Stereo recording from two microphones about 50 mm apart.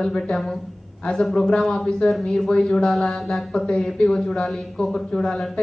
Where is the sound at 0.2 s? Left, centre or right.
Centre.